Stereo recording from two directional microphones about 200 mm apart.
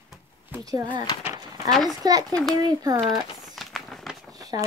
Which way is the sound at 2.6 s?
20° right (ahead or behind).